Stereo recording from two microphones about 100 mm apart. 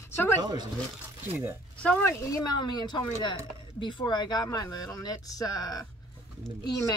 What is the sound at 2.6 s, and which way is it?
Speech, 45° left (ahead or behind).